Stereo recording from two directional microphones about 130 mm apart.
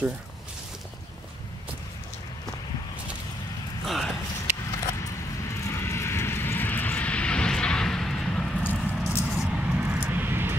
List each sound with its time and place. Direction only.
3.8 s a sound: centre (ahead or behind)
5.6 s vehicle: 20° left (ahead or behind); by 8.5 s 5° left (ahead or behind)
8.6 s vehicle: 15° left (ahead or behind)
9.3 s vehicle: 5° right (ahead or behind)